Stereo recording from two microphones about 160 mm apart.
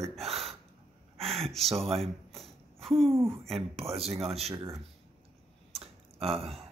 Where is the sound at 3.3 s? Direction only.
40° right (ahead or behind).